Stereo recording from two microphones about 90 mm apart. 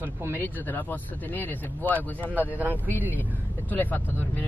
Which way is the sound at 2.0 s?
20° right (ahead or behind).